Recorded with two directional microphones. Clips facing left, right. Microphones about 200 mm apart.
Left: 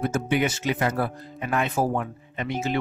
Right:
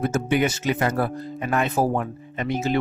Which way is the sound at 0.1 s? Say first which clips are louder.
Right 2 dB; 45° right (ahead or behind).